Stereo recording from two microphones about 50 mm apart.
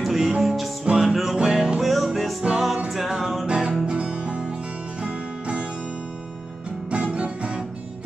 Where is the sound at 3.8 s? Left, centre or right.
Right.